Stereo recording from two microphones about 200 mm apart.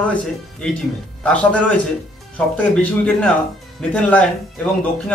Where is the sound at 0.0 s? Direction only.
5° left (ahead or behind).